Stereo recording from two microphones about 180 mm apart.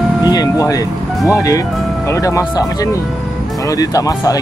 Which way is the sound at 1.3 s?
20° left (ahead or behind).